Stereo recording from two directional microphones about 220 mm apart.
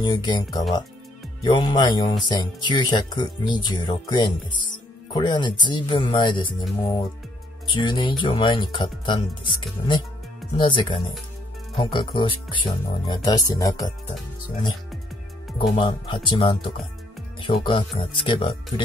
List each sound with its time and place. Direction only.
0.0 s speech: 20° left (ahead or behind)
7.7 s speech: 20° left (ahead or behind)
15.5 s speech: 25° left (ahead or behind)